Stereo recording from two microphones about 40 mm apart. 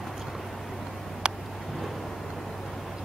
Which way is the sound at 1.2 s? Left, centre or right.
Right.